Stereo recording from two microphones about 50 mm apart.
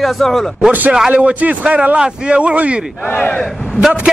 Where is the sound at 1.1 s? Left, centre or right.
Right.